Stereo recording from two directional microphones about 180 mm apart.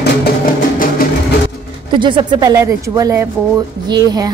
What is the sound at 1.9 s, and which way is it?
A woman's voice, 25° right (ahead or behind).